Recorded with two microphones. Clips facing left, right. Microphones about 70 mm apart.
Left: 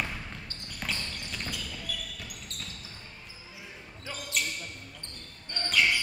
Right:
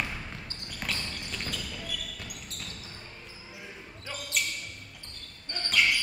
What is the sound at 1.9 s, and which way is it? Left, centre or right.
Basketball bounce, centre.